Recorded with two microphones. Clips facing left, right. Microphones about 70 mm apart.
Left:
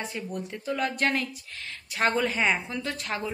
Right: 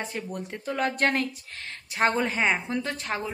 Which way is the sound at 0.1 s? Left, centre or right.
Right.